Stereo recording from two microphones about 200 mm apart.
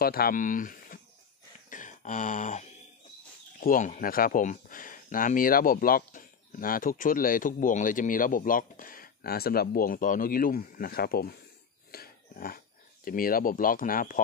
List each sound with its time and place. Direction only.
0.0 s speech: 50° left (ahead or behind)
1.7 s a sound: 40° left (ahead or behind)
3.6 s speech: 40° left (ahead or behind)